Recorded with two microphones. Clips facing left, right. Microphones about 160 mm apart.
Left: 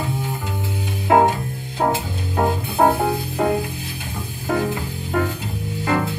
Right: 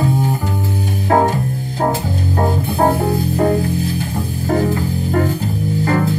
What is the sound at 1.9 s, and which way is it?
Music, 40° right (ahead or behind).